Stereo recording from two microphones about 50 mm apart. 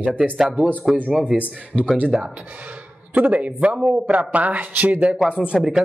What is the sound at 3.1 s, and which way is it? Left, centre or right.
Speech, right.